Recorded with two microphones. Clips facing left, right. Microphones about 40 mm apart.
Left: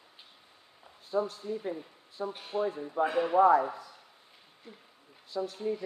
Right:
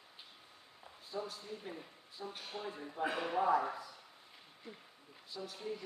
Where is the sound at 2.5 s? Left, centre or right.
Left.